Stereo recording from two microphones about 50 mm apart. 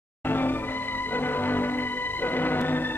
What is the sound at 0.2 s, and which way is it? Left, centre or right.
Music, left.